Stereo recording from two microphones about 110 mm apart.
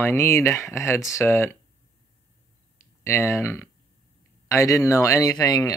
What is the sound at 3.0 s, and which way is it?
Speech, 25° left (ahead or behind).